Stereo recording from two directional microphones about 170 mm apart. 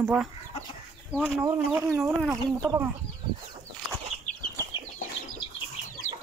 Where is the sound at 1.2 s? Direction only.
15° right (ahead or behind).